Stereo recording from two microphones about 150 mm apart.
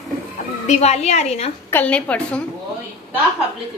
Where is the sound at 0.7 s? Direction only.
45° left (ahead or behind).